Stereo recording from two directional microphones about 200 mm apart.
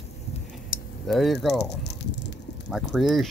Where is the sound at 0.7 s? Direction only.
45° left (ahead or behind).